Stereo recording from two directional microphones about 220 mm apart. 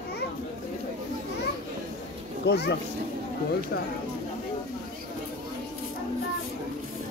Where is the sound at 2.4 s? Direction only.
50° left (ahead or behind).